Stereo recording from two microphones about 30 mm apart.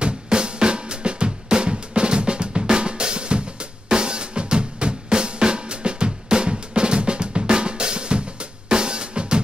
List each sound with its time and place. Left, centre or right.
0.0 s drum: right